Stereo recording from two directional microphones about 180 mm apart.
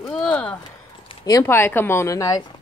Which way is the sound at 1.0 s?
20° left (ahead or behind).